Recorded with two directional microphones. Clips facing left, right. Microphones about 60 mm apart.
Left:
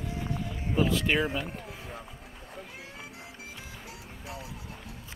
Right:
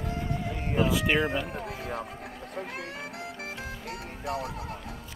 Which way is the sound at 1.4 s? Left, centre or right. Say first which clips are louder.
Right 6 dB; right.